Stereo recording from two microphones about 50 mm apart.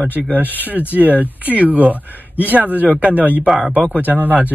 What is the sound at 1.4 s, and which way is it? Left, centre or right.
Speech, right.